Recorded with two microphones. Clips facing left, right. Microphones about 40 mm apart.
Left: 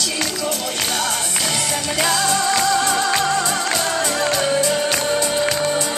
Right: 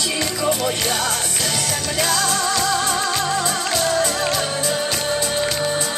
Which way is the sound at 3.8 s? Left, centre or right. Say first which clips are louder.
Right 2 dB; centre.